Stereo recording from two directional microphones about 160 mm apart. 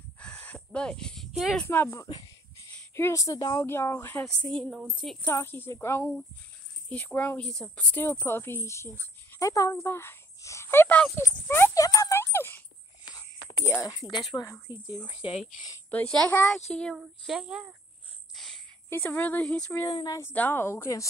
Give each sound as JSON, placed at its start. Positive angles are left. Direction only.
{"t": 0.2, "sound": "a sound", "side_deg": 10}
{"t": 1.6, "sound": "a woman's voice", "side_deg": 15}
{"t": 5.2, "sound": "a woman's voice", "side_deg": 15}
{"t": 13.7, "sound": "speech", "side_deg": 25}
{"t": 15.9, "sound": "a woman's voice", "side_deg": 5}
{"t": 16.9, "sound": "speech", "side_deg": -5}
{"t": 18.3, "sound": "a sound", "side_deg": 0}
{"t": 18.9, "sound": "a woman's voice", "side_deg": 15}
{"t": 19.9, "sound": "speech", "side_deg": 25}
{"t": 20.2, "sound": "a woman's voice", "side_deg": 15}